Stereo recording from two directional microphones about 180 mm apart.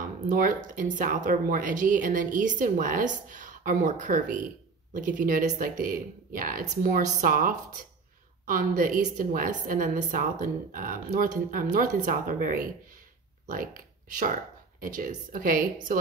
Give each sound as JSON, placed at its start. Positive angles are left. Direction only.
{"t": 0.0, "sound": "speech", "side_deg": -45}